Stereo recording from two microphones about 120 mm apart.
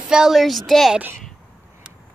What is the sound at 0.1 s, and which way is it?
Speech, 5° right (ahead or behind).